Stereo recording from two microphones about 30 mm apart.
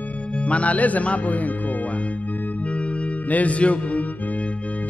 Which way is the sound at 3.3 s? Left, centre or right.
Left.